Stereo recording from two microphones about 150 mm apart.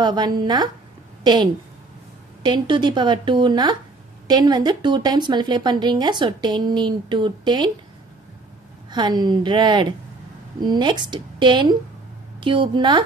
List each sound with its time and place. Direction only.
0.0 s a woman's voice: 30° right (ahead or behind)
8.9 s a woman's voice: 30° right (ahead or behind)